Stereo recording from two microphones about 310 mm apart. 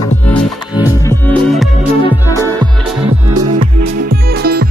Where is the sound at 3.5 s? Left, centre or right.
Right.